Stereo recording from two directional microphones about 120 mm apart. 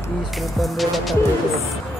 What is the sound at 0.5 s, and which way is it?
Speech, centre (ahead or behind).